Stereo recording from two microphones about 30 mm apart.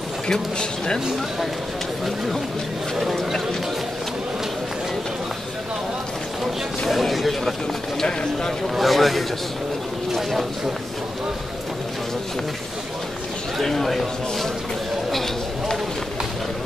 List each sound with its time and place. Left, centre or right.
0.3 s speech: left
6.9 s speech: centre
8.7 s speech: centre
13.6 s a man's voice: centre